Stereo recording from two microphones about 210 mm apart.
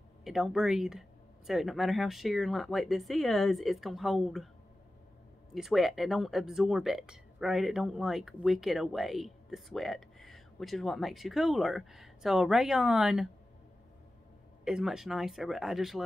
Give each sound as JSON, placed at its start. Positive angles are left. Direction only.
{"t": 0.2, "sound": "speech", "side_deg": 0}
{"t": 5.5, "sound": "speech", "side_deg": 0}
{"t": 14.6, "sound": "speech", "side_deg": 0}